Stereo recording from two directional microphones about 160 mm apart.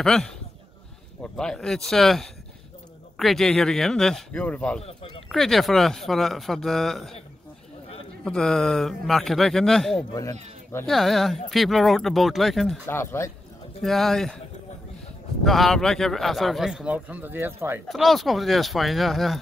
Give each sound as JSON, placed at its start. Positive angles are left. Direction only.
{"t": 0.0, "sound": "a man's voice", "side_deg": 5}
{"t": 1.3, "sound": "a man's voice", "side_deg": 5}
{"t": 8.2, "sound": "a man's voice", "side_deg": 5}
{"t": 12.8, "sound": "speech", "side_deg": 15}
{"t": 13.8, "sound": "a man's voice", "side_deg": 0}
{"t": 15.4, "sound": "a man's voice", "side_deg": 0}
{"t": 17.8, "sound": "a man's voice", "side_deg": 0}